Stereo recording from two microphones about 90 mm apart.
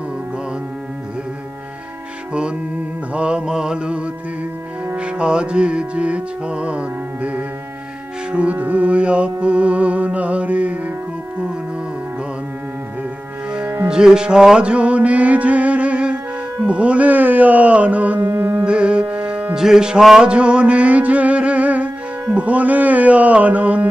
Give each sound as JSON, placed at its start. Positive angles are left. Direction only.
{"t": 3.1, "sound": "music", "side_deg": -10}
{"t": 13.8, "sound": "music", "side_deg": -10}